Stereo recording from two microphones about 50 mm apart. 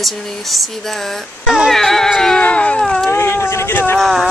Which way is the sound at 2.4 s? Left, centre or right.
Left.